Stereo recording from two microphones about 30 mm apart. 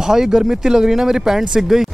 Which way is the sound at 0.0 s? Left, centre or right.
Centre.